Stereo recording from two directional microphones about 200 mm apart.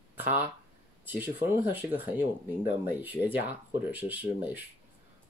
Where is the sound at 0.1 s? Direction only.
10° right (ahead or behind).